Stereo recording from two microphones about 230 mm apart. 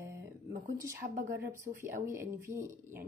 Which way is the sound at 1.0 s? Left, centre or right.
Right.